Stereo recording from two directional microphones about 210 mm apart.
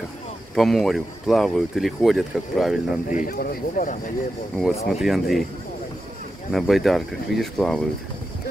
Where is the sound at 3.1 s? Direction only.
40° left (ahead or behind).